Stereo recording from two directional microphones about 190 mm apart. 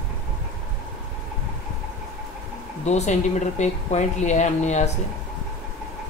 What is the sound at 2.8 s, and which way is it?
Speech, 35° left (ahead or behind).